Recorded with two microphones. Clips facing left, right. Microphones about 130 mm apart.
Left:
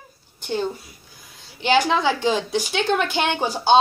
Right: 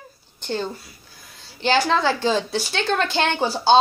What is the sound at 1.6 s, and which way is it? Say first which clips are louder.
A woman's voice: even; 15° left (ahead or behind).